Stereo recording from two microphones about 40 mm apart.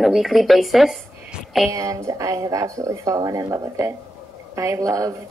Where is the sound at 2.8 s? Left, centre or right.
Right.